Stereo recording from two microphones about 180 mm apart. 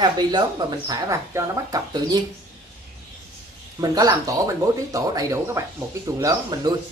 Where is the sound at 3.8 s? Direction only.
20° right (ahead or behind).